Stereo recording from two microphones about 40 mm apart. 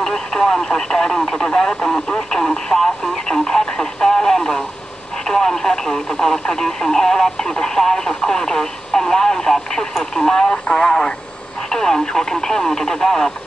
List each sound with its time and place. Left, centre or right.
0.0 s speech: centre
2.4 s radio: centre
5.2 s speech: centre
10.4 s speech: left
11.7 s speech: centre